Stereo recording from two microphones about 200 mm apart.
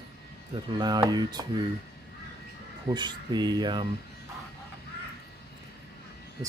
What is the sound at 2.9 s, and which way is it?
Speech, 20° right (ahead or behind).